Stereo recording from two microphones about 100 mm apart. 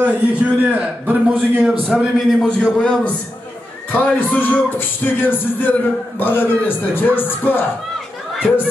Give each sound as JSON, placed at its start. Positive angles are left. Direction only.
{"t": 0.0, "sound": "a man's voice", "side_deg": -15}
{"t": 2.4, "sound": "a man's voice", "side_deg": 10}